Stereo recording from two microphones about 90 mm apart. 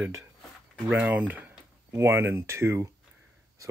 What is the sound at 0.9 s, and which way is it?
Speech, 15° right (ahead or behind).